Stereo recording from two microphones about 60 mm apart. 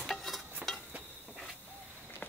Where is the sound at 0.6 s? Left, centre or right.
Right.